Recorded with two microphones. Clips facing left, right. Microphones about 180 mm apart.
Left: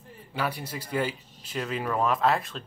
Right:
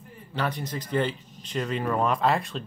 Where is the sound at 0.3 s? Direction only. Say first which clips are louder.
Right 2 dB; 10° left (ahead or behind).